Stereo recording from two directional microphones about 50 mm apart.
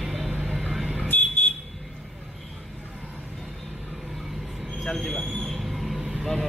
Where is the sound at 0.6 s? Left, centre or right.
Centre.